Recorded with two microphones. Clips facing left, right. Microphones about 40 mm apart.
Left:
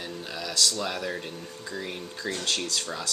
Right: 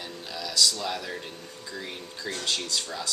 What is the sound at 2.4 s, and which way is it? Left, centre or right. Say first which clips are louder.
Speech: right 1 dB; left.